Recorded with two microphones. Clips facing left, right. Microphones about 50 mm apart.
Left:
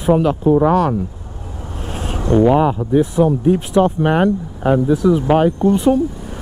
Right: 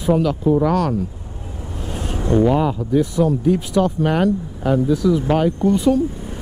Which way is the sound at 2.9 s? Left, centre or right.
Left.